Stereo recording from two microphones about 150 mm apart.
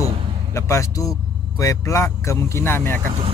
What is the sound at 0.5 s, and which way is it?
Speech, 20° left (ahead or behind).